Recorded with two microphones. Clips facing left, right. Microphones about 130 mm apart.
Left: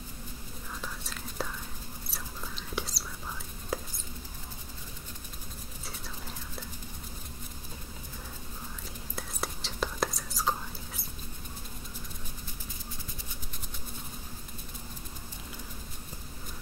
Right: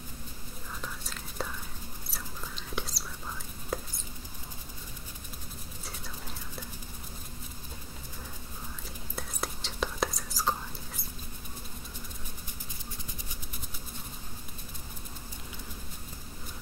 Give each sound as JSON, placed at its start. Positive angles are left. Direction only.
{"t": 0.7, "sound": "whispering", "side_deg": 0}
{"t": 3.7, "sound": "mouse", "side_deg": 5}
{"t": 9.1, "sound": "whispering", "side_deg": 0}